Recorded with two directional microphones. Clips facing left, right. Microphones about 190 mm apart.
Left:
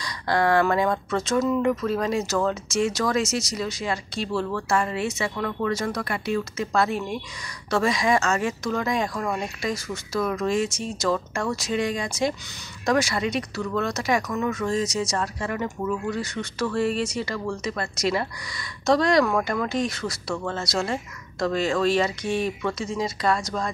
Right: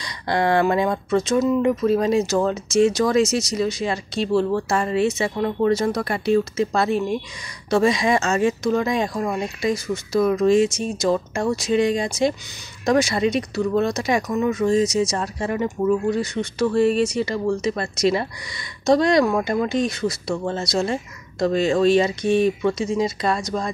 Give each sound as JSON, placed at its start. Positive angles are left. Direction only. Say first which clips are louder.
{"t": 0.0, "sound": "speech", "louder": "right 1 dB", "side_deg": -25}